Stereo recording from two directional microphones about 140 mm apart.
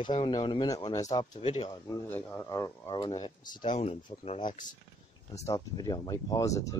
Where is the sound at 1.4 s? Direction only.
45° left (ahead or behind).